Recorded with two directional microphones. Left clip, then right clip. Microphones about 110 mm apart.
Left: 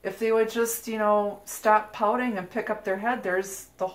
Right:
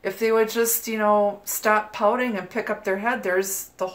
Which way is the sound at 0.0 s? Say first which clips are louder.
Right 3 dB; 30° right (ahead or behind).